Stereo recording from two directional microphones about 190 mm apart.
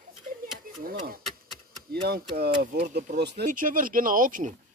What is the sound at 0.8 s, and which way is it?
Speech, 50° right (ahead or behind).